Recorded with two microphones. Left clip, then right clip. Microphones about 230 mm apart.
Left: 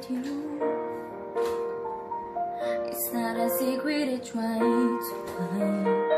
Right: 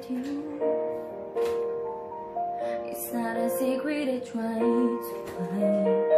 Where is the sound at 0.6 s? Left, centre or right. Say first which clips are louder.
Right 2 dB; centre.